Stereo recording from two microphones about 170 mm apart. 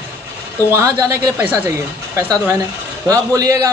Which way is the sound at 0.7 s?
20° right (ahead or behind).